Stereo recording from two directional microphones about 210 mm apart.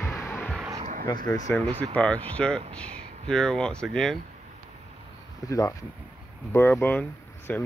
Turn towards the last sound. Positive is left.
turn(degrees=10)  # may be behind; listen again after turning